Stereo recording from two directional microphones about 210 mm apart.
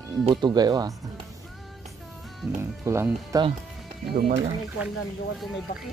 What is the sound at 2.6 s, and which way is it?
Speech, 10° right (ahead or behind).